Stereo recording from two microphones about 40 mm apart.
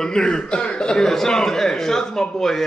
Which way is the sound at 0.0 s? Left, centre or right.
Centre.